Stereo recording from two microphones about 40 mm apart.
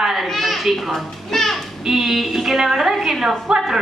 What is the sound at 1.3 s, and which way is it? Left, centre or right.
Music, centre.